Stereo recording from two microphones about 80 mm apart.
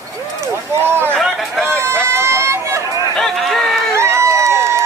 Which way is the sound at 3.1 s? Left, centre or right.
Centre.